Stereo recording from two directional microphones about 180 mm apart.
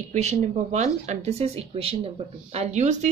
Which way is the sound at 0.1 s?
40° right (ahead or behind).